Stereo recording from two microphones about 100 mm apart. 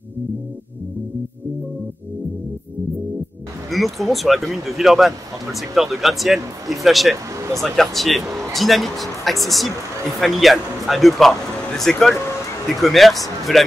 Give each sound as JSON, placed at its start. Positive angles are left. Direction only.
{"t": 3.7, "sound": "speech", "side_deg": 0}
{"t": 7.3, "sound": "a sound", "side_deg": -30}
{"t": 7.6, "sound": "speech", "side_deg": 0}